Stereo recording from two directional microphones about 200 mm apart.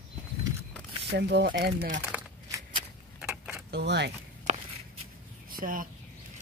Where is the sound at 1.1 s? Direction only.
55° right (ahead or behind).